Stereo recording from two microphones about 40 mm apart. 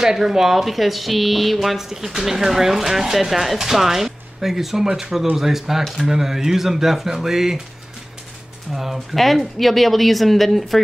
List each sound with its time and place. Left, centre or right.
0.0 s speech: centre
8.7 s a woman's voice: centre